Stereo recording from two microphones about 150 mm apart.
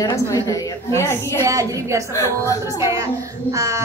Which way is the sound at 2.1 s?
20° left (ahead or behind).